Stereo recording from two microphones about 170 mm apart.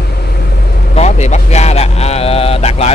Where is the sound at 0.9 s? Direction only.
40° left (ahead or behind).